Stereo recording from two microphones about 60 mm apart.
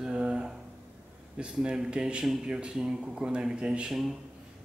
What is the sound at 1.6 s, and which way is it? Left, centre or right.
Speech, centre.